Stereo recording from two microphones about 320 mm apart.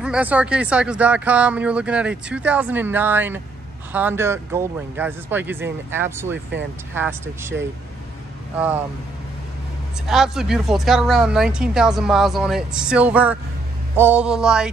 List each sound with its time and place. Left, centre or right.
0.0 s a woman's voice: centre
10.0 s a woman's voice: centre